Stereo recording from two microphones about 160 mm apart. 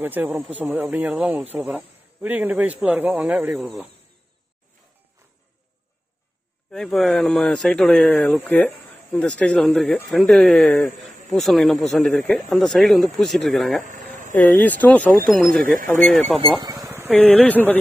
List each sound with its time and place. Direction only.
0.0 s speech: 10° right (ahead or behind)
6.7 s speech: centre (ahead or behind)
15.6 s speech: 60° right (ahead or behind)
16.0 s speech: 10° left (ahead or behind)
16.5 s a sound: 25° right (ahead or behind)
17.1 s speech: 10° left (ahead or behind)